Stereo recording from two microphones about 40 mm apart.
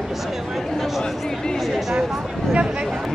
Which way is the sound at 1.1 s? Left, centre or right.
Centre.